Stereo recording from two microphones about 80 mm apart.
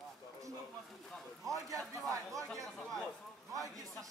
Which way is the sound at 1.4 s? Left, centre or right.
Right.